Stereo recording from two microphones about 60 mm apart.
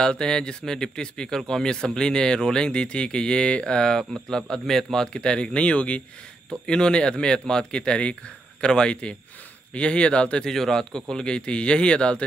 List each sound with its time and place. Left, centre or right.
0.0 s a man's voice: centre